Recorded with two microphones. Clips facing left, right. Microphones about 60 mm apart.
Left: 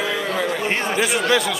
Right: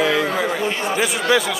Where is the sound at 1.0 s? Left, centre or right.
Centre.